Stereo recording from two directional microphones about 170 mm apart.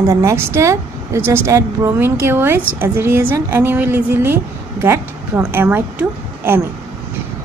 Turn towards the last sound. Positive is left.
turn(degrees=-10)  # may be behind; listen again after turning